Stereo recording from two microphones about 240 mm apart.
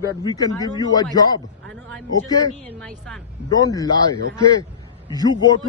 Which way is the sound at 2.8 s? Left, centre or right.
Centre.